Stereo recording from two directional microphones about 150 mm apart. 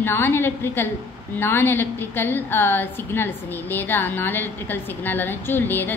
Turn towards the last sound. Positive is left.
turn(degrees=15)  # may be behind; listen again after turning